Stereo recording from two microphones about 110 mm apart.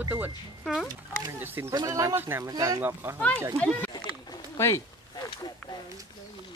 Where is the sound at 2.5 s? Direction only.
30° right (ahead or behind).